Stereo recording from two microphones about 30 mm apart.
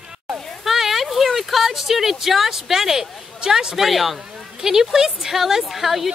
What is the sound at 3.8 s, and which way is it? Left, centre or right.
Speech, centre.